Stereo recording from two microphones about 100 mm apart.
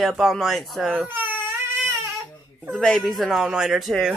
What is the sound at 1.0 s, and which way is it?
Baby cry, 20° right (ahead or behind).